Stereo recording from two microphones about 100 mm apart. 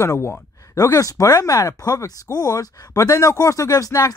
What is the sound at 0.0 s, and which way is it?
Speech, 30° left (ahead or behind).